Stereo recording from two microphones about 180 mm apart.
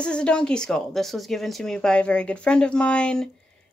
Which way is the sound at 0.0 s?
5° left (ahead or behind).